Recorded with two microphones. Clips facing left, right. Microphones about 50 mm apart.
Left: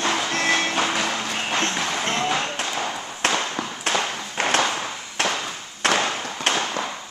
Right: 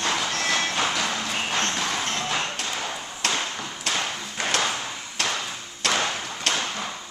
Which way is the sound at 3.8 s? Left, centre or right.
Left.